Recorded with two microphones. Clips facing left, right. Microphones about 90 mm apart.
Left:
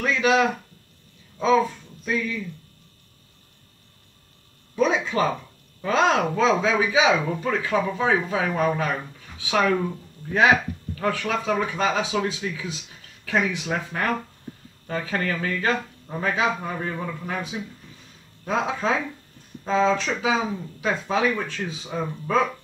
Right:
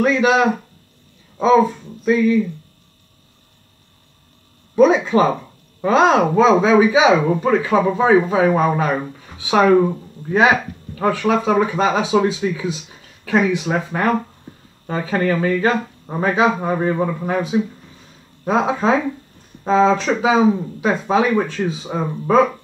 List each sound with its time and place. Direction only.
0.0 s speech: 15° right (ahead or behind)
4.7 s speech: 25° right (ahead or behind)
9.2 s speech: 15° right (ahead or behind)
9.8 s speech: 30° right (ahead or behind)
18.5 s speech: 25° right (ahead or behind)